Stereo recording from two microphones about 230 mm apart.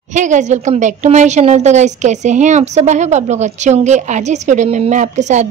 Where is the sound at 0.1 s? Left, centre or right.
Right.